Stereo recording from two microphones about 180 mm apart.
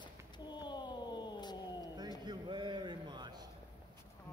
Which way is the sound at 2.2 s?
25° right (ahead or behind).